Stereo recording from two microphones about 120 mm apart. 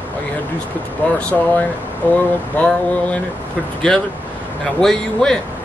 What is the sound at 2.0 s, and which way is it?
Speech, 15° left (ahead or behind).